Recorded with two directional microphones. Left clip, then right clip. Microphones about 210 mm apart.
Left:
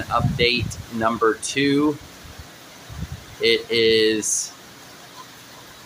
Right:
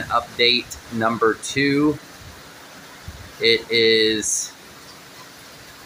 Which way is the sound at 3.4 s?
65° left (ahead or behind).